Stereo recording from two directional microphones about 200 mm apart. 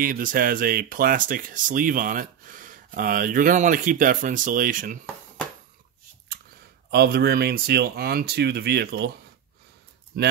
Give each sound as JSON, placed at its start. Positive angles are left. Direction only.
{"t": 0.0, "sound": "speech", "side_deg": -45}
{"t": 6.9, "sound": "speech", "side_deg": -55}